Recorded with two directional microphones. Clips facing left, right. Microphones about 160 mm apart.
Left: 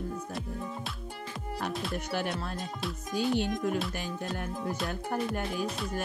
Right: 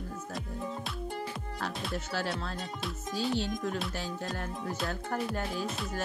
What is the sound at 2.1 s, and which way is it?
Speech, 15° left (ahead or behind).